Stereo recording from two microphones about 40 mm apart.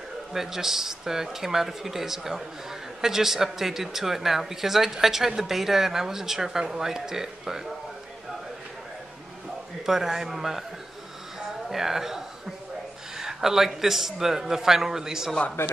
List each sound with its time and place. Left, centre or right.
0.3 s speech: centre
9.8 s speech: centre
11.3 s a sound: centre
13.2 s speech: centre
15.6 s speech: left